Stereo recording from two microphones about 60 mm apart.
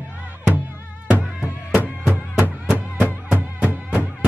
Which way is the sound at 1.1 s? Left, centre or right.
Right.